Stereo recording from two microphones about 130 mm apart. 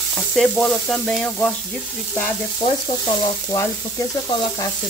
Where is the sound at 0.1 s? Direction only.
5° left (ahead or behind).